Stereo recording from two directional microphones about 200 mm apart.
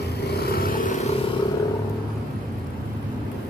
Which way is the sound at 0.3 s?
50° left (ahead or behind).